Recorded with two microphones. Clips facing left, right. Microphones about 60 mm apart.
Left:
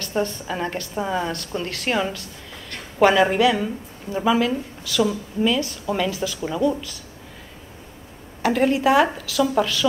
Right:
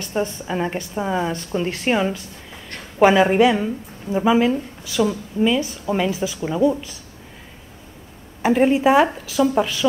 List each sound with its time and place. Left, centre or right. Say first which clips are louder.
0.0 s a woman's voice: right 1 dB; centre
8.4 s a woman's voice: right 3 dB; centre